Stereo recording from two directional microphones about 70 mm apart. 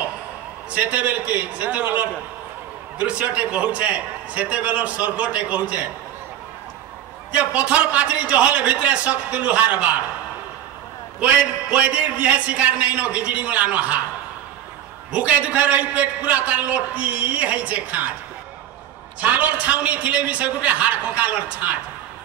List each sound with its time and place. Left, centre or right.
0.7 s a man's voice: right
7.3 s a man's voice: centre
11.1 s a man's voice: centre
15.1 s a man's voice: centre
19.2 s a man's voice: right